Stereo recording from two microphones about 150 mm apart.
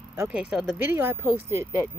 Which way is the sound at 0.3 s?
5° right (ahead or behind).